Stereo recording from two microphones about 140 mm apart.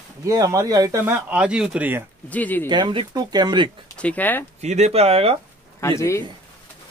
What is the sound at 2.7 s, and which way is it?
Speech, 35° right (ahead or behind).